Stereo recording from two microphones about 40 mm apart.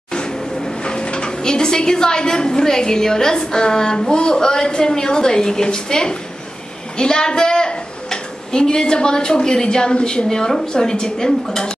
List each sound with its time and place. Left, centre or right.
0.1 s a woman's voice: centre